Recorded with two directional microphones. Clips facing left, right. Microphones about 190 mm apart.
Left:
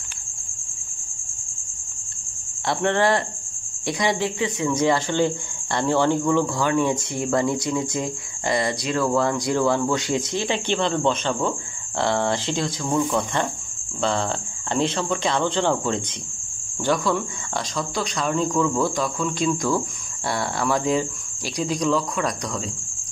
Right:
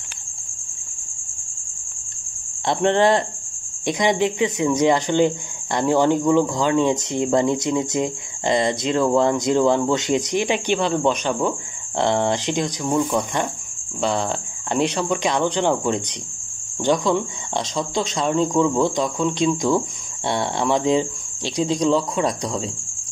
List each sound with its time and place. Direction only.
2.6 s speech: 20° right (ahead or behind)
14.7 s speech: 15° right (ahead or behind)